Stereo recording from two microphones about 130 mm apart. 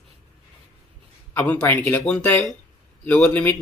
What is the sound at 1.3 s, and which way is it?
Speech, 15° left (ahead or behind).